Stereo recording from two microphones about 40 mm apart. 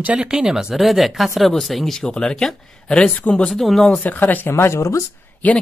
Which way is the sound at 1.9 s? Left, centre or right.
Centre.